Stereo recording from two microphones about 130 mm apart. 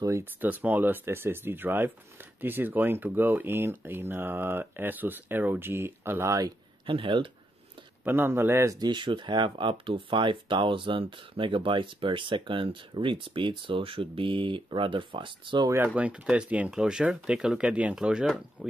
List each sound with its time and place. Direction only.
0.0 s speech: 20° right (ahead or behind)
6.9 s speech: 40° right (ahead or behind)
8.0 s speech: 15° right (ahead or behind); by 15.7 s 40° right (ahead or behind)
15.7 s speech: 15° right (ahead or behind)